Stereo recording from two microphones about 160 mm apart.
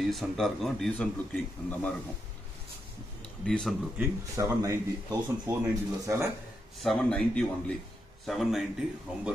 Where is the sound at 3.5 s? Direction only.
Centre (ahead or behind).